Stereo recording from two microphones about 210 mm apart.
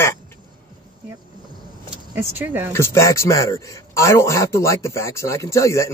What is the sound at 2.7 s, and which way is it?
A man's voice, 15° left (ahead or behind).